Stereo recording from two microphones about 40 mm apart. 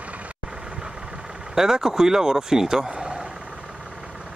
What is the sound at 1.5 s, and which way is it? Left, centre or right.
Speech, centre.